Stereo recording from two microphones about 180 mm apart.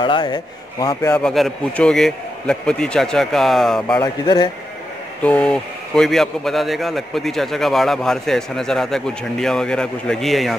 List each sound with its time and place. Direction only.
0.0 s a man's voice: 25° left (ahead or behind)
1.1 s speech: centre (ahead or behind)
4.0 s a man's voice: 20° left (ahead or behind)
5.2 s speech: 5° left (ahead or behind)